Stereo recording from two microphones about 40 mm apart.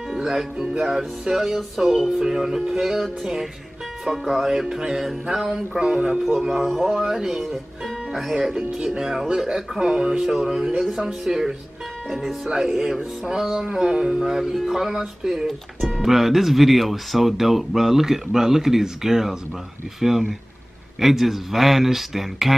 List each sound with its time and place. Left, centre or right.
0.1 s music: centre
0.6 s speech: centre
5.7 s speech: right
14.3 s speech: centre
15.4 s speech: centre